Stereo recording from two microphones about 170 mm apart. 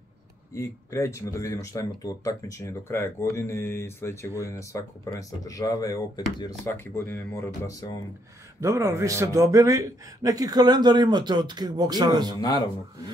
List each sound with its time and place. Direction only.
0.6 s speech: 20° left (ahead or behind)
8.5 s a man's voice: 15° right (ahead or behind)
12.4 s speech: 20° left (ahead or behind)